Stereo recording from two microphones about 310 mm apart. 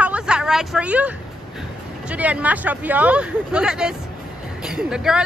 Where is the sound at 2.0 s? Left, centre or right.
Centre.